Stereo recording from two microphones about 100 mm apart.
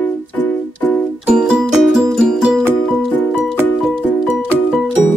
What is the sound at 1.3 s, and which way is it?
Music, 5° right (ahead or behind).